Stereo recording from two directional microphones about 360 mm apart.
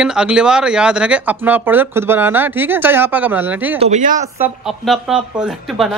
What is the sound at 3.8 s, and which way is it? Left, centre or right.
Speech, centre.